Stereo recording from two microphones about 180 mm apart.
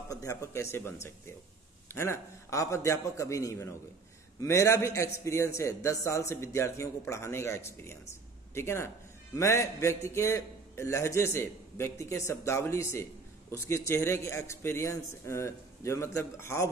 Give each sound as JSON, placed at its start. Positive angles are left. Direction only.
{"t": 0.1, "sound": "a man's voice", "side_deg": 15}
{"t": 2.0, "sound": "a man's voice", "side_deg": 15}